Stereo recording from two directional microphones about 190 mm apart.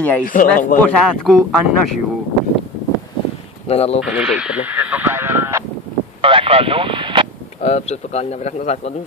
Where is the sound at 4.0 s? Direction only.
5° right (ahead or behind).